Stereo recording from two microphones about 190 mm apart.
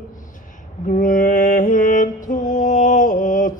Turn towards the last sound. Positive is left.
turn(degrees=45)  # may be behind; listen again after turning